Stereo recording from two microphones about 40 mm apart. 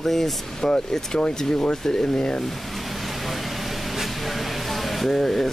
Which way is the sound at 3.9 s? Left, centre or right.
Centre.